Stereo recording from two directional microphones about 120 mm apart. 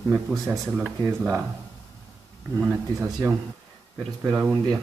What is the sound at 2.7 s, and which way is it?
Speech, 25° right (ahead or behind).